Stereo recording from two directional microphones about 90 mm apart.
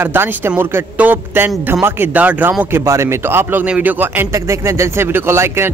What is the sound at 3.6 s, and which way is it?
Speech, 15° right (ahead or behind).